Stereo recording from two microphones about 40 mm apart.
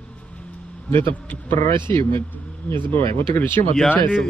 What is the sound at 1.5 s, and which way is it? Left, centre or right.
Speech, left.